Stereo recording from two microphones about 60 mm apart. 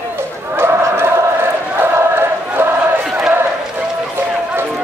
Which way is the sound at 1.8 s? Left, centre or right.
Right.